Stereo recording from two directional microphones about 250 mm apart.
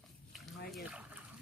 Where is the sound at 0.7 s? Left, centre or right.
Centre.